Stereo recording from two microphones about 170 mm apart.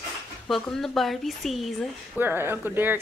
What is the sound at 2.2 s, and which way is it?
Speech, 15° right (ahead or behind).